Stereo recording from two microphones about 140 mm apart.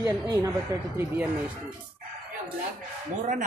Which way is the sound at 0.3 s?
25° right (ahead or behind).